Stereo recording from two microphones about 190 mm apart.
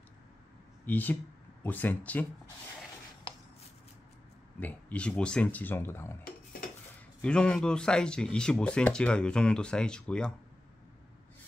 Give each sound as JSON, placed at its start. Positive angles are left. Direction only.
{"t": 0.8, "sound": "speech", "side_deg": 10}
{"t": 4.6, "sound": "speech", "side_deg": 10}
{"t": 7.2, "sound": "speech", "side_deg": 5}